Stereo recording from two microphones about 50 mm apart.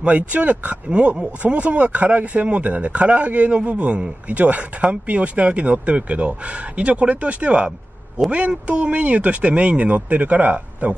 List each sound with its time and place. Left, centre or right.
0.1 s speech: right